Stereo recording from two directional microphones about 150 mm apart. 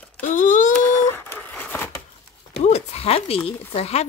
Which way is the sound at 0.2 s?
55° left (ahead or behind).